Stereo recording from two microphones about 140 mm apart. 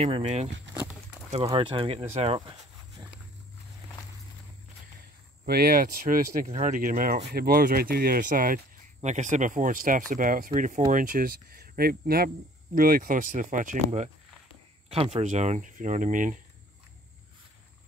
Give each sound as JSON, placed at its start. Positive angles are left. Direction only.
{"t": 0.0, "sound": "speech", "side_deg": -50}
{"t": 1.5, "sound": "speech", "side_deg": -35}
{"t": 3.0, "sound": "wild animals", "side_deg": -35}
{"t": 5.4, "sound": "speech", "side_deg": -90}
{"t": 6.4, "sound": "speech", "side_deg": -70}
{"t": 9.0, "sound": "speech", "side_deg": -60}
{"t": 14.9, "sound": "speech", "side_deg": -50}